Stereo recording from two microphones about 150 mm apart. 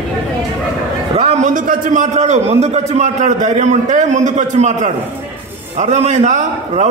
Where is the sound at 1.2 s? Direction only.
55° right (ahead or behind).